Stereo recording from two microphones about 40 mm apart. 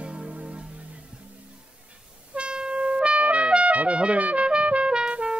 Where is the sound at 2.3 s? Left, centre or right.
Right.